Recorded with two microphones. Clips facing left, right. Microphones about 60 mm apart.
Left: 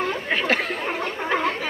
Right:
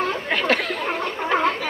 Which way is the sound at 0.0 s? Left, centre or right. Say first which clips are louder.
Right 1 dB; left.